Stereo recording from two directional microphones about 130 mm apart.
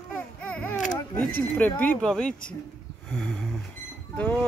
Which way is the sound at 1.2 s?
15° left (ahead or behind).